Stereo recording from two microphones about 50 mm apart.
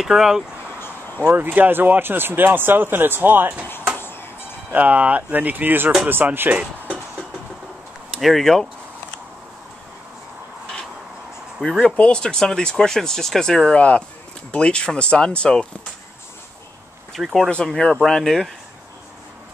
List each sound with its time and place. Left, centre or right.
0.0 s speech: centre
0.7 s a sound: left
1.3 s speech: right
4.0 s music: left
4.7 s speech: right
8.1 s speech: centre
11.8 s speech: centre
13.7 s speech: left
17.1 s speech: centre